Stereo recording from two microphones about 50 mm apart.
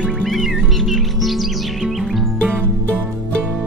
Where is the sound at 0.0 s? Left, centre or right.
Centre.